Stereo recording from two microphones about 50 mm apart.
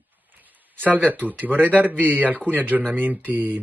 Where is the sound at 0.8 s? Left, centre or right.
Right.